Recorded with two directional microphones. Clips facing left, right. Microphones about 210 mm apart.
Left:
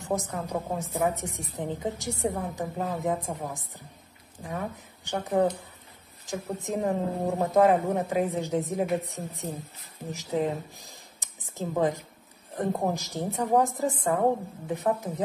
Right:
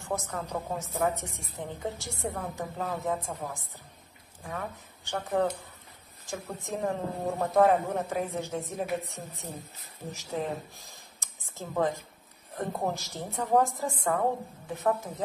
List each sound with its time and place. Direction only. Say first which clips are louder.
0.0 s a woman's voice: left 3 dB; 15° left (ahead or behind)